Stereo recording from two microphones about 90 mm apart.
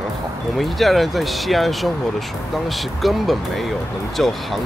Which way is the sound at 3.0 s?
Centre (ahead or behind).